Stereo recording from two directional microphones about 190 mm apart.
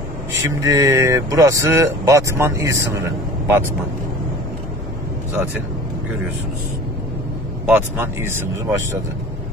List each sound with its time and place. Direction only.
0.7 s speech: 15° right (ahead or behind)
7.6 s speech: 10° right (ahead or behind)